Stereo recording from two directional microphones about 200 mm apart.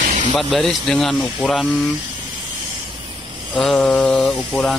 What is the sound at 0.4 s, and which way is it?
Speech, centre (ahead or behind).